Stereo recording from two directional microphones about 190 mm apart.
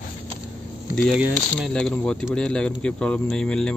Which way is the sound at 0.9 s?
Centre (ahead or behind).